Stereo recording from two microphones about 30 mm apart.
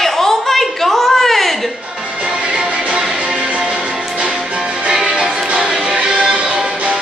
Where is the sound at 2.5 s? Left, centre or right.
Right.